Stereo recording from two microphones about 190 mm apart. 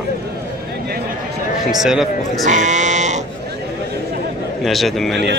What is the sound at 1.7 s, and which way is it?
Speech, centre (ahead or behind).